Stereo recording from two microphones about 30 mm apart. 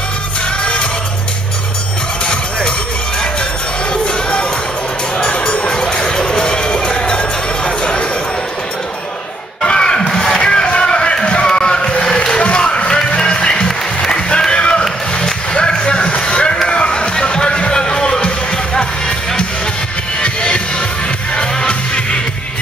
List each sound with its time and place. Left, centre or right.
3.9 s music: left
5.7 s bow-wow: left
6.2 s a sound: left
7.0 s music: left
9.6 s a sound: left
9.9 s music: centre
10.3 s a sound: left
13.1 s music: left
15.1 s music: left